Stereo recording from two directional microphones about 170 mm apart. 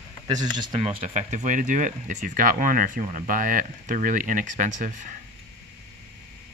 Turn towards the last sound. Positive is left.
turn(degrees=-50)  # may be behind; listen again after turning